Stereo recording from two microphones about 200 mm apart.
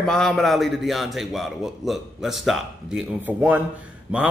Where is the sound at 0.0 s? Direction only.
Centre (ahead or behind).